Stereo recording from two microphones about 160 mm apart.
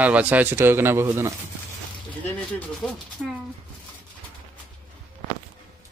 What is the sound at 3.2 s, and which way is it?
Speech, 5° right (ahead or behind).